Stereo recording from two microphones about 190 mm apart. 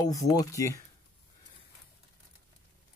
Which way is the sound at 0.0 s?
20° left (ahead or behind).